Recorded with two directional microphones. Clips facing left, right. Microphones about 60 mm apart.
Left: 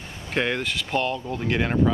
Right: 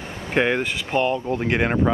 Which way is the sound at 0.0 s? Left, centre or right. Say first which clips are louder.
Right 6 dB; right.